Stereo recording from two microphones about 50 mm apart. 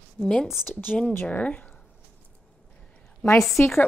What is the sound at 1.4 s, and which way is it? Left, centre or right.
Speech, left.